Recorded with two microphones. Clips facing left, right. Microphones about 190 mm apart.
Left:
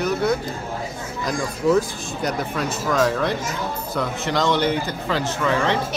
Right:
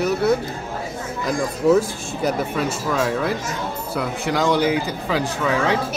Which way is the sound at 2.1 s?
5° right (ahead or behind).